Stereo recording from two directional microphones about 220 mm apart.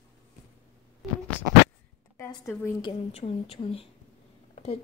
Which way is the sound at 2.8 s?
25° left (ahead or behind).